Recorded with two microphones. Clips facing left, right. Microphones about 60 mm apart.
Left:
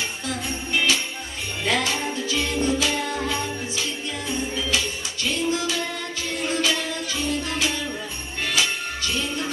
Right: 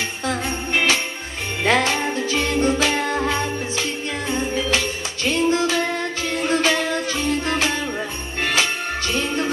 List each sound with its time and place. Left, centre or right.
0.3 s jingle bell: right
4.3 s music: right
8.4 s jingle bell: right